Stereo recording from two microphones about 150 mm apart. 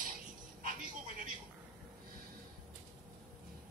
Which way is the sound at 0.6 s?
65° right (ahead or behind).